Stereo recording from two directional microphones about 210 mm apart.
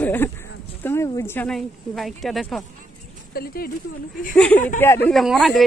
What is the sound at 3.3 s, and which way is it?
Speech, 45° left (ahead or behind).